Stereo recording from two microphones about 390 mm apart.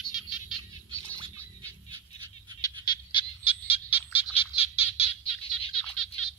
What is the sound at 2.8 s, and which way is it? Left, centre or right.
Frog, centre.